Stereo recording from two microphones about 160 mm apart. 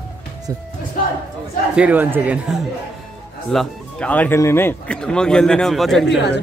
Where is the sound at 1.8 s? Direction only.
10° right (ahead or behind).